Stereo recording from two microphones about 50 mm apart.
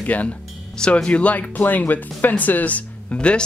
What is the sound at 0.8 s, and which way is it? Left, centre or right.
Speech, centre.